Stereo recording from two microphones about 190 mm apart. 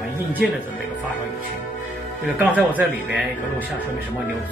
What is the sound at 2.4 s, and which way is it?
Speech, 10° right (ahead or behind).